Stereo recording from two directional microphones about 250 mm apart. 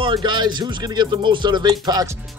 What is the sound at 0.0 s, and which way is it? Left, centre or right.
Speech, centre.